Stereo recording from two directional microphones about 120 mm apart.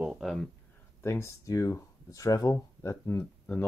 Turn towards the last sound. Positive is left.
turn(degrees=20)  # may be behind; listen again after turning